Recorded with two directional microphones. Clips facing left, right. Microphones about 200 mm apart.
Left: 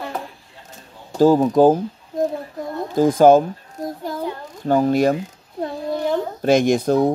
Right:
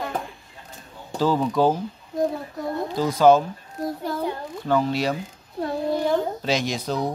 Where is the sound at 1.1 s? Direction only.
45° left (ahead or behind).